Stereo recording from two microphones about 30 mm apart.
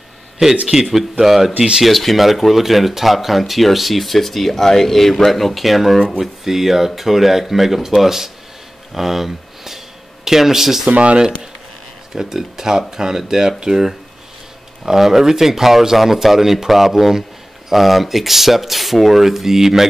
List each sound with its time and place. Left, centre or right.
0.4 s speech: centre
12.2 s speech: centre
14.9 s speech: centre